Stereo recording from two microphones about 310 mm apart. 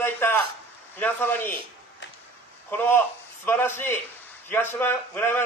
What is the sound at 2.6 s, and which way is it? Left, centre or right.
A man's voice, centre.